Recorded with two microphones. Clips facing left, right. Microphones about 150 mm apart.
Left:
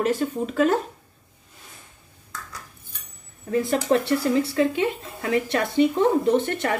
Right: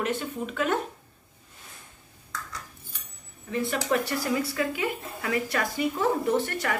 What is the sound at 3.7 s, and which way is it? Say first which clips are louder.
Speech: left 7 dB; 30° left (ahead or behind).